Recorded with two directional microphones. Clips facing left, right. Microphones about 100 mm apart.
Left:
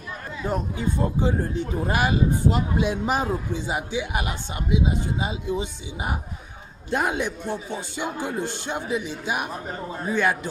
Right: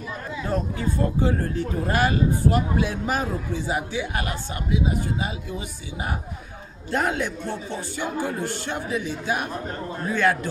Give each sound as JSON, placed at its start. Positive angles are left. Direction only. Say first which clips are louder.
{"t": 0.5, "sound": "a man's voice", "louder": "even", "side_deg": 20}
{"t": 9.5, "sound": "a man's voice", "louder": "right 1 dB", "side_deg": 5}
{"t": 10.1, "sound": "speech", "louder": "right 1 dB", "side_deg": 15}